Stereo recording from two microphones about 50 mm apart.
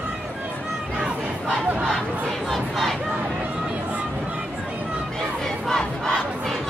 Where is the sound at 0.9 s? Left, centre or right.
Centre.